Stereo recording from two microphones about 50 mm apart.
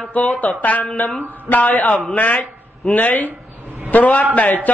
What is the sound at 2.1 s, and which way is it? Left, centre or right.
A man's voice, left.